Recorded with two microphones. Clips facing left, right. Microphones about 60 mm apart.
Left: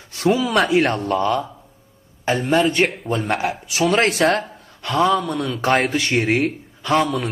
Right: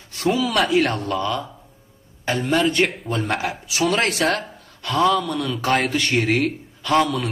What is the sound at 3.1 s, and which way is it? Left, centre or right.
Speech, left.